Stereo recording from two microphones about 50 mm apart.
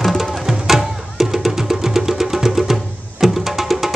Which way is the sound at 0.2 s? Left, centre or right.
Centre.